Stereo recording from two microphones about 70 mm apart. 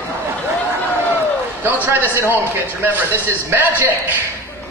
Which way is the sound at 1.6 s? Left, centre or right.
Right.